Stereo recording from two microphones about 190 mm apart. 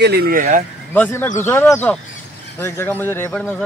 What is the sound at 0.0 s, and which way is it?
Speech, 55° right (ahead or behind).